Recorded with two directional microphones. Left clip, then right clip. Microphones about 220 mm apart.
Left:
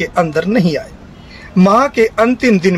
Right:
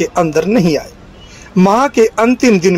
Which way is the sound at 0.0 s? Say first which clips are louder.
Right 2 dB; 10° right (ahead or behind).